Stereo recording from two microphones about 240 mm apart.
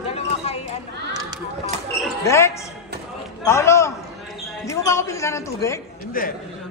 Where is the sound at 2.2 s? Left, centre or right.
Centre.